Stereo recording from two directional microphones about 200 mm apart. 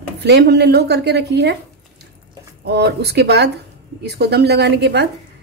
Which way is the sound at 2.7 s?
55° right (ahead or behind).